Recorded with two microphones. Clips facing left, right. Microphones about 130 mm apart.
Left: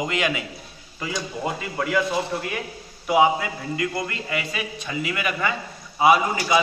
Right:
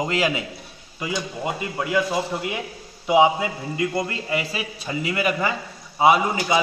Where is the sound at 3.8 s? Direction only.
25° right (ahead or behind).